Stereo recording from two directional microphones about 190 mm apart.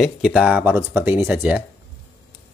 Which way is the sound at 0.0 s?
Centre (ahead or behind).